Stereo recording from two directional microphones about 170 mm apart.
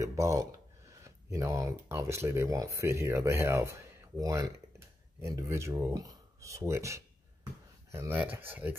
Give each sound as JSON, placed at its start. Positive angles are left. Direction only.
{"t": 0.0, "sound": "speech", "side_deg": -15}